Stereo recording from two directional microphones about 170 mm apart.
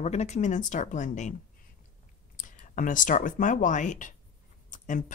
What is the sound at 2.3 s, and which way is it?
Speech, 50° left (ahead or behind).